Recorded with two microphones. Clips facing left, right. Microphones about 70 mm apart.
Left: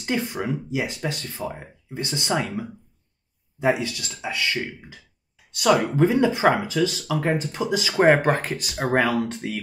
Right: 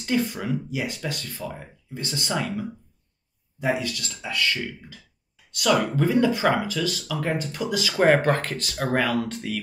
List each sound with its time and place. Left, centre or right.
0.0 s speech: left